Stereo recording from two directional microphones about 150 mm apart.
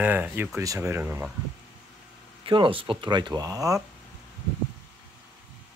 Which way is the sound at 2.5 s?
35° right (ahead or behind).